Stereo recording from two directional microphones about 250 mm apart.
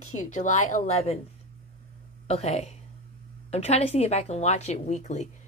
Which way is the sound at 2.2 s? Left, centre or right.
Left.